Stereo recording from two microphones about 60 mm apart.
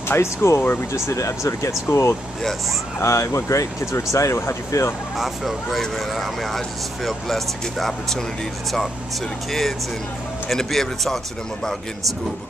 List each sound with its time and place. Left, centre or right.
0.1 s speech: left
5.1 s speech: centre
9.5 s speech: centre